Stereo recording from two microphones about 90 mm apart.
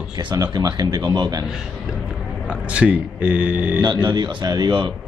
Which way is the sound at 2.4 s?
15° right (ahead or behind).